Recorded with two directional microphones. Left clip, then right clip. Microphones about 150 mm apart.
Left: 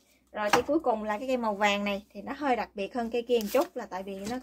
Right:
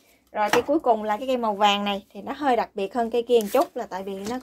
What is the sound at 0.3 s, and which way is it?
Speech, 45° right (ahead or behind).